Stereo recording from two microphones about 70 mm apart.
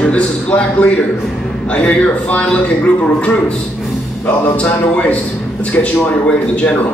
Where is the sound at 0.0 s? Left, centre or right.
Centre.